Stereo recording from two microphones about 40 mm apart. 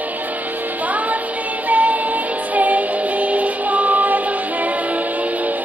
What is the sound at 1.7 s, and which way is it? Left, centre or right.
Music, right.